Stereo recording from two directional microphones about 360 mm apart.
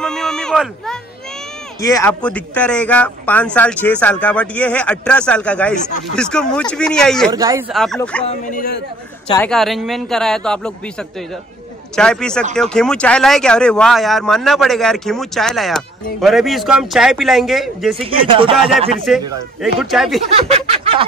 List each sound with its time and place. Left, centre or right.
0.0 s a man's voice: centre
8.3 s speech: left
9.3 s a man's voice: centre
18.0 s speech: centre
18.9 s a man's voice: centre
20.3 s a sound: centre